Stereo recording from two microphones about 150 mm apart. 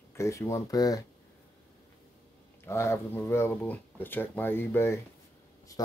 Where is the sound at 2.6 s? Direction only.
20° left (ahead or behind).